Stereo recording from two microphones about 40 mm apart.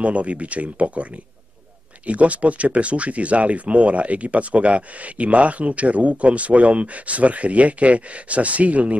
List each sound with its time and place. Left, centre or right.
0.0 s speech: right
2.0 s speech: right